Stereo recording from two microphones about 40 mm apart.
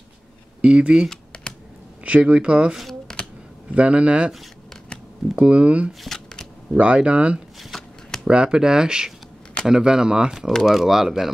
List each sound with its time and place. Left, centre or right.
0.6 s speech: right
1.1 s computer keyboard: left
2.0 s speech: right
3.1 s a sound: centre
3.7 s speech: right
5.3 s speech: right
6.0 s shuffling cards: centre
6.7 s speech: right
7.7 s shuffling cards: centre
8.3 s speech: right
10.6 s speech: centre